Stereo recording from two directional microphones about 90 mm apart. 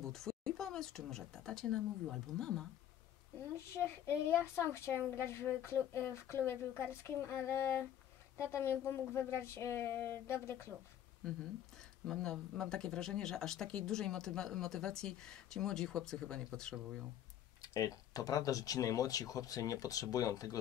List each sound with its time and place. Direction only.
0.0 s speech: 5° left (ahead or behind)
3.7 s a woman's voice: 25° left (ahead or behind)
12.1 s speech: 5° left (ahead or behind)
17.6 s speech: 40° left (ahead or behind)